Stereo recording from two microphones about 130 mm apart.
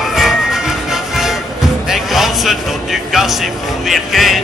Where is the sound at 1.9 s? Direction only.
Centre (ahead or behind).